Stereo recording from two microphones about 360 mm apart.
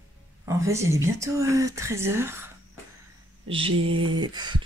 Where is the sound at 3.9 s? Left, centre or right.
Right.